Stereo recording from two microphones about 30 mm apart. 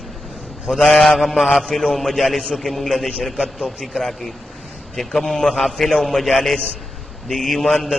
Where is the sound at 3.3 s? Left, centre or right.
Centre.